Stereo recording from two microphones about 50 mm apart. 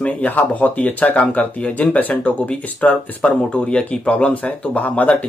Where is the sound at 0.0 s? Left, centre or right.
Left.